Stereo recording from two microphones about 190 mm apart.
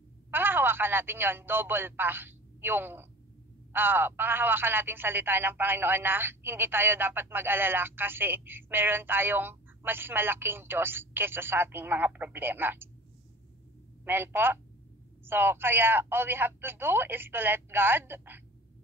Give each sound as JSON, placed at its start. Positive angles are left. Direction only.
{"t": 0.3, "sound": "speech", "side_deg": -10}
{"t": 14.0, "sound": "speech", "side_deg": -10}